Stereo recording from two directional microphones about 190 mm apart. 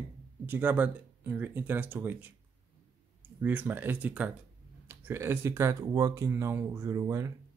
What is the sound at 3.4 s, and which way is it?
Speech, 10° right (ahead or behind).